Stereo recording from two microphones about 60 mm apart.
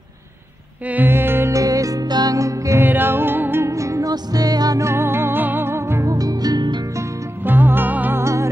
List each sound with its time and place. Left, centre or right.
0.8 s music: right
1.5 s music: right
2.8 s music: right
3.6 s music: right
4.8 s music: right
6.0 s music: right
7.4 s music: right
8.2 s music: right